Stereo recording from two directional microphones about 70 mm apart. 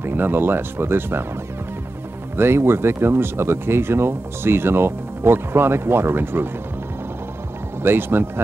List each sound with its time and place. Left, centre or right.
0.0 s speech: right
2.3 s speech: right
7.8 s speech: right